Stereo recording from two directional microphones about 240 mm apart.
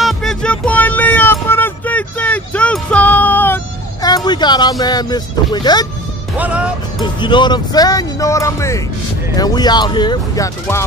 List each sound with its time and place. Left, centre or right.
0.0 s music: centre
6.3 s music: centre
7.2 s speech: centre